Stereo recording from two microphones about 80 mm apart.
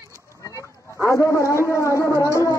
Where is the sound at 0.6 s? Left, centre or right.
Left.